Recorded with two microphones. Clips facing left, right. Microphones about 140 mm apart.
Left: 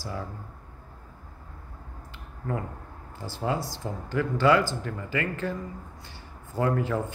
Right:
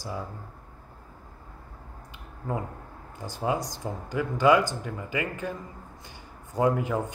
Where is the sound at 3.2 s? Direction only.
15° right (ahead or behind).